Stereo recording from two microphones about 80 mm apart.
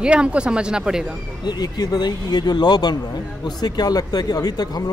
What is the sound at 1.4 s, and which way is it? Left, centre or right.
Speech, left.